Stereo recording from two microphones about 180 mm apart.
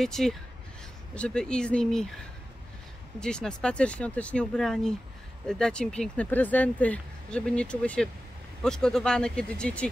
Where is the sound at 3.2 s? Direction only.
5° left (ahead or behind).